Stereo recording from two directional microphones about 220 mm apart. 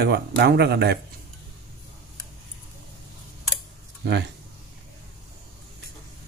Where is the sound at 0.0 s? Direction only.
45° right (ahead or behind).